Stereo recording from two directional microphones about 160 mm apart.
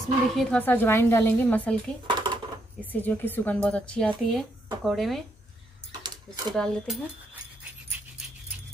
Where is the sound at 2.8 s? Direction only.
10° left (ahead or behind).